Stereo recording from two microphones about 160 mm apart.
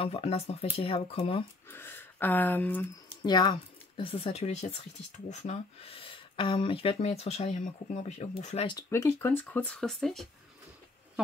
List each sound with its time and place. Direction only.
0.0 s speech: 40° left (ahead or behind)
1.7 s speech: 15° left (ahead or behind)
3.3 s speech: 30° left (ahead or behind); by 8.6 s 45° left (ahead or behind)
8.6 s speech: 20° left (ahead or behind); by 10.2 s centre (ahead or behind)